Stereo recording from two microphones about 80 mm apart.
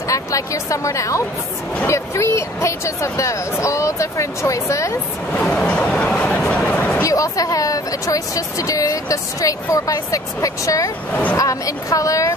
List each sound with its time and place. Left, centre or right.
0.1 s speech: left
5.3 s speech: centre
6.5 s a sound: centre
7.0 s speech: left